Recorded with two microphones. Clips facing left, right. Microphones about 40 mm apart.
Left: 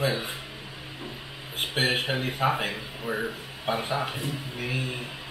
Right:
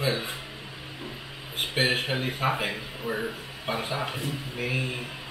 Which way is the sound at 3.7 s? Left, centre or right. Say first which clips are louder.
Left 2 dB; centre.